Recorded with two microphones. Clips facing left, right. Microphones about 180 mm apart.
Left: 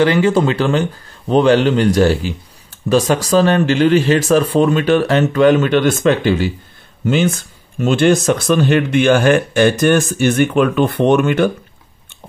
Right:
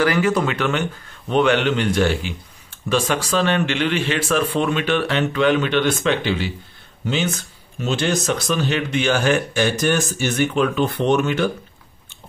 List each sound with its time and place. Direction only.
0.0 s speech: 25° left (ahead or behind); by 11.5 s 55° left (ahead or behind)